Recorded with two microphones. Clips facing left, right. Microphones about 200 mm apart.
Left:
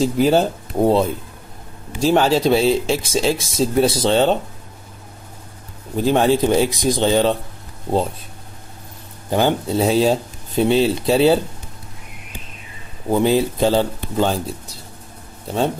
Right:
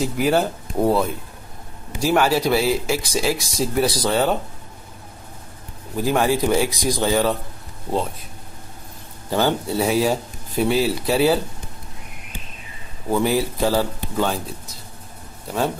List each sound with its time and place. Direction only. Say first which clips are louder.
0.0 s speech: left 4 dB; 25° left (ahead or behind)
5.9 s speech: left 4 dB; 25° left (ahead or behind)
9.3 s speech: left 3 dB; 15° left (ahead or behind)
13.1 s speech: left 3 dB; 20° left (ahead or behind)
15.4 s speech: left 3 dB; 25° left (ahead or behind)